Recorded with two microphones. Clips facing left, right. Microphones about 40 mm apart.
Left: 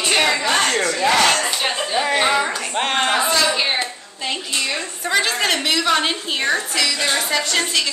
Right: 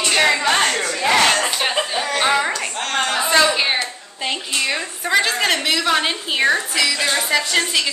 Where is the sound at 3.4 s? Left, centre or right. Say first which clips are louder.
Right 1 dB; centre.